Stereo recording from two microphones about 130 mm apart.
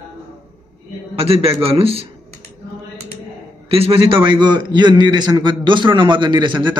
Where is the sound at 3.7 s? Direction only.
45° right (ahead or behind).